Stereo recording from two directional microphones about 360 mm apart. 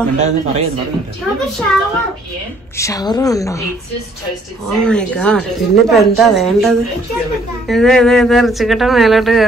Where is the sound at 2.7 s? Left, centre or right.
Centre.